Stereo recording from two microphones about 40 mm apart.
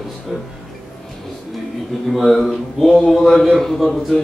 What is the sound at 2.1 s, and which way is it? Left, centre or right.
A man's voice, centre.